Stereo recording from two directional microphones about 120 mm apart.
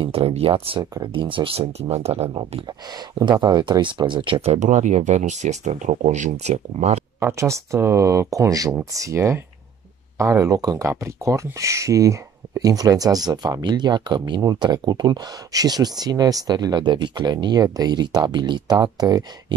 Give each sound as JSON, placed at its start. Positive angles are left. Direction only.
{"t": 0.0, "sound": "speech", "side_deg": -55}
{"t": 2.9, "sound": "speech", "side_deg": -35}
{"t": 4.4, "sound": "speech", "side_deg": -75}
{"t": 7.2, "sound": "speech", "side_deg": -25}